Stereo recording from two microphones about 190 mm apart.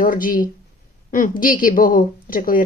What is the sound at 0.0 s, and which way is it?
A woman's voice, 45° left (ahead or behind).